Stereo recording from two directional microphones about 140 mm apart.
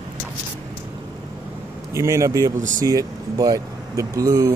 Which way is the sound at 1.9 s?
20° right (ahead or behind).